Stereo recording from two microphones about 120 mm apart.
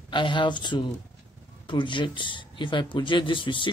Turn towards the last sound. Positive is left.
turn(degrees=45)  # may be behind; listen again after turning